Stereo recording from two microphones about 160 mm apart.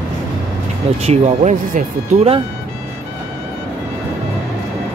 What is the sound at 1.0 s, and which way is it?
Speech, 40° right (ahead or behind).